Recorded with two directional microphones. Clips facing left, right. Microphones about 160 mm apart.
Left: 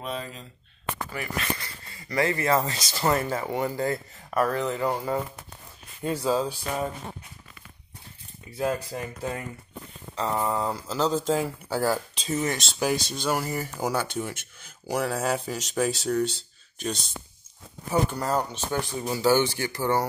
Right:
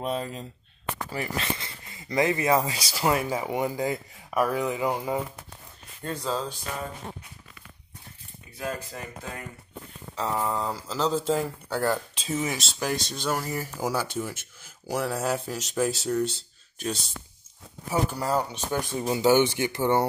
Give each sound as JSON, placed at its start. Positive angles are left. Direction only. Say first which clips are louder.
{"t": 0.0, "sound": "speech", "louder": "right 4 dB", "side_deg": -40}
{"t": 1.1, "sound": "speech", "louder": "right 2 dB", "side_deg": -30}
{"t": 6.0, "sound": "speech", "louder": "left 5 dB", "side_deg": 10}
{"t": 10.1, "sound": "speech", "louder": "left 1 dB", "side_deg": 0}
{"t": 12.7, "sound": "speech", "louder": "left 3 dB", "side_deg": 5}